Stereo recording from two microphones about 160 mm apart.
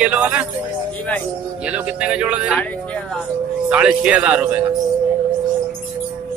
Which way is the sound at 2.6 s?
10° left (ahead or behind).